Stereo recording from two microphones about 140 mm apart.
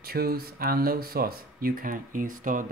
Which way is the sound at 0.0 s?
90° right.